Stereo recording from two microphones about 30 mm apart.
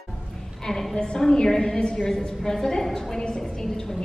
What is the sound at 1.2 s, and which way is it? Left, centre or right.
A woman's voice, left.